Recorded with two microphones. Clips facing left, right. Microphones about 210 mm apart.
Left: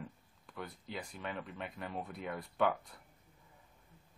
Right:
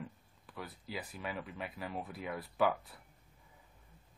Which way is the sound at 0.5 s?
5° right (ahead or behind).